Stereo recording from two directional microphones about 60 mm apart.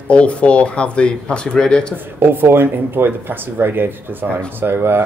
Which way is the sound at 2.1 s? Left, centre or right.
Right.